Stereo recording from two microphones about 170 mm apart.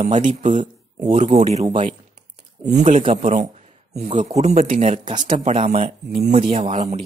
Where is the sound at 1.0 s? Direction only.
30° right (ahead or behind).